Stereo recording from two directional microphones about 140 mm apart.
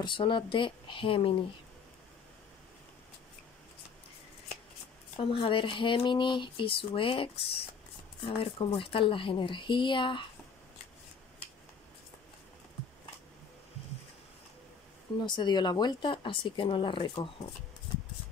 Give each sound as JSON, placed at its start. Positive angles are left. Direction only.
{"t": 0.0, "sound": "speech", "side_deg": 35}
{"t": 5.1, "sound": "speech", "side_deg": 40}
{"t": 15.1, "sound": "speech", "side_deg": 30}